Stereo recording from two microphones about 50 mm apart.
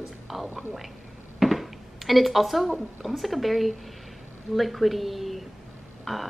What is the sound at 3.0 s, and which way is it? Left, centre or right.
A woman's voice, centre.